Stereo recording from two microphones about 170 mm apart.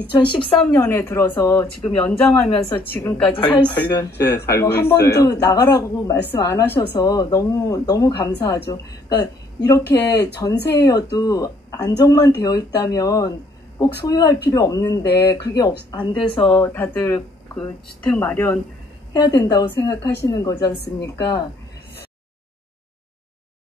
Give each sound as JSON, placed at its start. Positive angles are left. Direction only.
{"t": 0.5, "sound": "speech", "side_deg": 10}
{"t": 16.4, "sound": "speech", "side_deg": 15}
{"t": 19.1, "sound": "speech", "side_deg": 25}